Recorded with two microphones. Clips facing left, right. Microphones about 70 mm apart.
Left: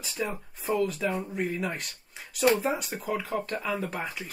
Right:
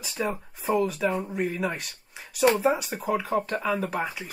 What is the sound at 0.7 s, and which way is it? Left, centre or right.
Speech, centre.